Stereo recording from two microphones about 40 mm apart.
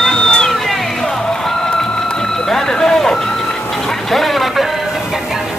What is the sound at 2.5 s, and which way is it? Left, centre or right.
Vehicle, centre.